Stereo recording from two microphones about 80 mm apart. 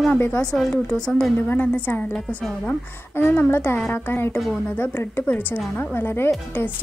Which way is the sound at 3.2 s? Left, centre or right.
Left.